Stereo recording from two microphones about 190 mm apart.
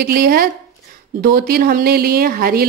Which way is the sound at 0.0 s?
55° right (ahead or behind).